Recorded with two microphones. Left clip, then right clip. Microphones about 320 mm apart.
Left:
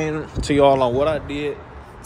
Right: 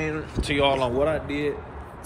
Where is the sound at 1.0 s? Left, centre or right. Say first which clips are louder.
Left 3 dB; centre.